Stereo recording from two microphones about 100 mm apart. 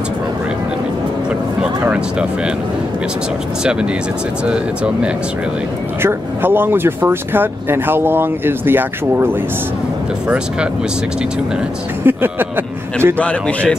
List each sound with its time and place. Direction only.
1.9 s speech: 10° right (ahead or behind)
4.5 s speech: 10° right (ahead or behind)
6.0 s speech: 20° right (ahead or behind)
10.2 s speech: 10° right (ahead or behind)
12.0 s speech: 20° right (ahead or behind)
13.2 s speech: 15° left (ahead or behind)